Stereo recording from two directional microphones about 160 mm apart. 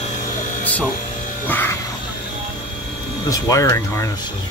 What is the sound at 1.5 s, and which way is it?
Music, 15° left (ahead or behind).